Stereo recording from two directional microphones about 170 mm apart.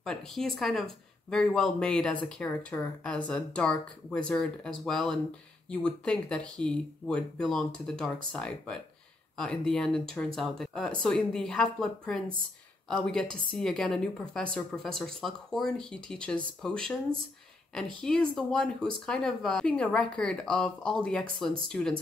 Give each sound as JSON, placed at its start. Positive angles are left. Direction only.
{"t": 0.0, "sound": "a woman's voice", "side_deg": 5}